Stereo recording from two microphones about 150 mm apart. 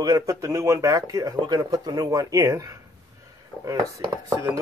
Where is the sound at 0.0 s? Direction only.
20° right (ahead or behind).